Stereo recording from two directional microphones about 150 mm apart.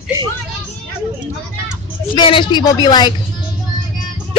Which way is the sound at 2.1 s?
30° left (ahead or behind).